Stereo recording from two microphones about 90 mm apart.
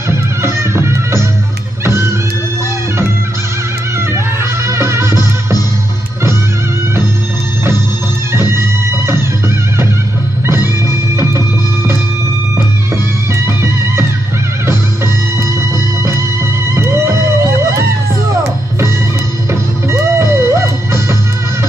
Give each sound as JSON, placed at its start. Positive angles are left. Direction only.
{"t": 0.1, "sound": "music", "side_deg": -30}
{"t": 4.6, "sound": "music", "side_deg": -30}
{"t": 8.3, "sound": "music", "side_deg": -30}
{"t": 10.4, "sound": "music", "side_deg": -30}
{"t": 16.7, "sound": "music", "side_deg": -30}
{"t": 19.9, "sound": "music", "side_deg": -30}